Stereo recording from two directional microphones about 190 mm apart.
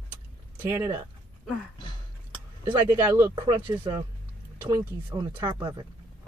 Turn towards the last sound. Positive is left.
turn(degrees=-20)  # may be behind; listen again after turning